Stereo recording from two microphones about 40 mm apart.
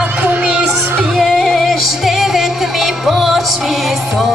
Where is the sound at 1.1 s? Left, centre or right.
Centre.